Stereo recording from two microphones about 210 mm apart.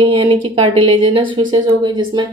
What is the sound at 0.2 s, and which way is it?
A woman's voice, 25° right (ahead or behind).